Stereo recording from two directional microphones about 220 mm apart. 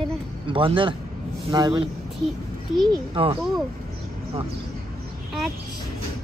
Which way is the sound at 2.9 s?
25° right (ahead or behind).